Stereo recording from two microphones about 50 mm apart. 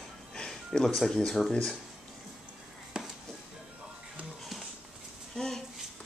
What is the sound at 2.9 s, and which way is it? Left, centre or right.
Music, centre.